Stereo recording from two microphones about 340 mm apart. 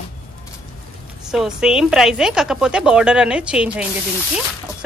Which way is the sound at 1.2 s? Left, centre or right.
Centre.